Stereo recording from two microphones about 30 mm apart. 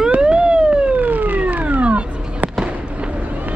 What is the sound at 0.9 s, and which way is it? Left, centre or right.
Police car, right.